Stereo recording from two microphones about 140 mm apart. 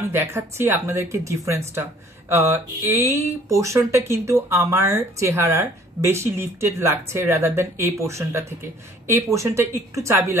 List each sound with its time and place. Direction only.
0.1 s speech: 15° right (ahead or behind)